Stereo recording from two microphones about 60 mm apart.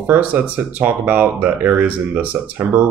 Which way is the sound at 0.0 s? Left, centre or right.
Right.